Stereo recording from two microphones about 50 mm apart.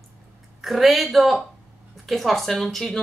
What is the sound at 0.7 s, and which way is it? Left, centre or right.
A woman's voice, centre.